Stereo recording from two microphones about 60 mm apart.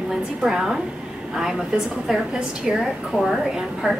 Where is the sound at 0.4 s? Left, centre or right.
Centre.